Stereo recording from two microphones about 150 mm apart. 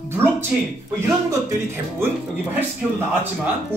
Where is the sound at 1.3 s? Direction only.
15° right (ahead or behind).